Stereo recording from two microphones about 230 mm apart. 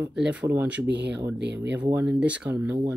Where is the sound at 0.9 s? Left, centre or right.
Right.